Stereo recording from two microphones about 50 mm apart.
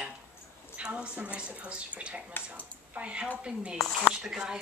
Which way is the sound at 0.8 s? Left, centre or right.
Centre.